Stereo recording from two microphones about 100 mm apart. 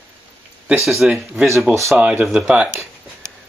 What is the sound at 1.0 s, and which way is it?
Speech, 5° right (ahead or behind).